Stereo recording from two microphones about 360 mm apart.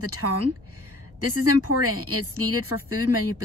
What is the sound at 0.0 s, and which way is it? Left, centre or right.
Speech, right.